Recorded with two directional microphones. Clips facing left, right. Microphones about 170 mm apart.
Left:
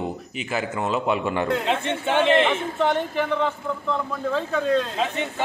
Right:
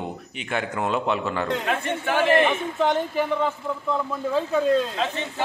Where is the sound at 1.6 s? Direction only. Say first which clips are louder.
Left 1 dB; 25° left (ahead or behind).